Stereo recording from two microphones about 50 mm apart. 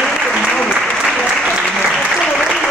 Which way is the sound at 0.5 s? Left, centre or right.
Left.